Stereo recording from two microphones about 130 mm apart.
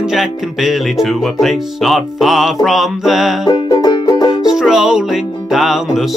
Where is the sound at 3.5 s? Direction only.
35° left (ahead or behind).